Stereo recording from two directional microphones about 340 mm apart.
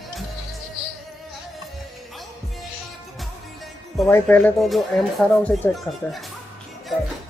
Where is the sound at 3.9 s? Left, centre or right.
Centre.